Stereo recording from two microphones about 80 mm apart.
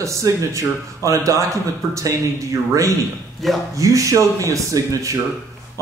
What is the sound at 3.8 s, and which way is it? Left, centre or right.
Speech, right.